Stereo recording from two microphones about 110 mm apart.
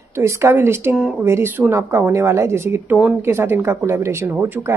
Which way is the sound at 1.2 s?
20° right (ahead or behind).